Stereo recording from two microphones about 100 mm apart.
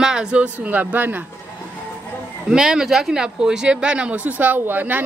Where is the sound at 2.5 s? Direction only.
5° right (ahead or behind).